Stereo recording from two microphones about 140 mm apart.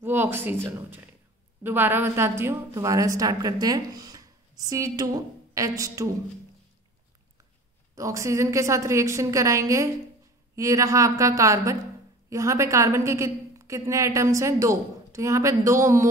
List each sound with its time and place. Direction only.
0.0 s a sound: 15° right (ahead or behind)
0.7 s a woman's voice: 15° right (ahead or behind)
7.9 s a woman's voice: 25° right (ahead or behind)